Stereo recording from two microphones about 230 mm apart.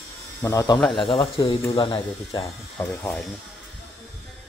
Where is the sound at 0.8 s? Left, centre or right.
Centre.